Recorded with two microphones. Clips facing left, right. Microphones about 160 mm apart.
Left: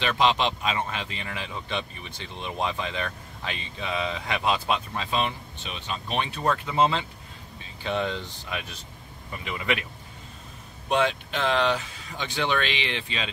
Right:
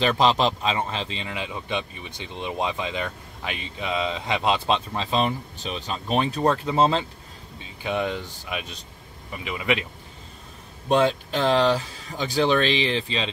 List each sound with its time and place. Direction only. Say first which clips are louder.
0.0 s speech: right 3 dB; 35° right (ahead or behind)
7.8 s speech: right 2 dB; 15° right (ahead or behind)
10.9 s speech: right 4 dB; 35° right (ahead or behind)